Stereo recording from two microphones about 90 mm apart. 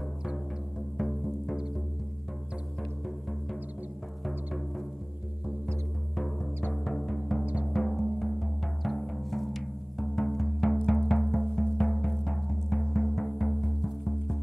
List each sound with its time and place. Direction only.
0.9 s music: centre (ahead or behind)
6.7 s music: 5° left (ahead or behind)